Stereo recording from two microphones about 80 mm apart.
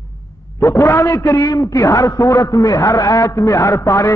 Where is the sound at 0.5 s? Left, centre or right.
Left.